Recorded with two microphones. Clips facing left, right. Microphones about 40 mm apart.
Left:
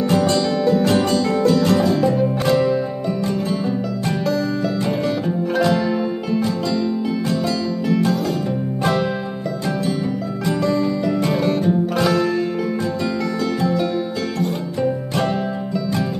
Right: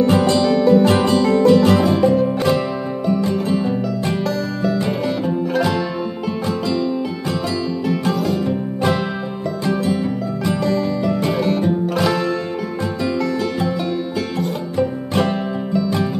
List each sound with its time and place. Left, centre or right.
0.0 s music: centre
0.8 s music: right
2.1 s music: centre
5.2 s music: centre
7.9 s music: centre
10.6 s music: centre
13.6 s music: centre